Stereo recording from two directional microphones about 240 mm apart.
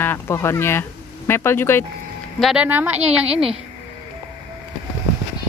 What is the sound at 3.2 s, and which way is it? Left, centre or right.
Speech, right.